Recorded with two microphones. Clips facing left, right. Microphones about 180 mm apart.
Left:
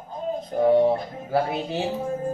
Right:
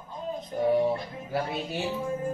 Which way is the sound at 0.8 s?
55° left (ahead or behind).